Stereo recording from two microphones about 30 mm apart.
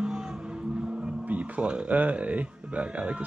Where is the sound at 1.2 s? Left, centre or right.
Right.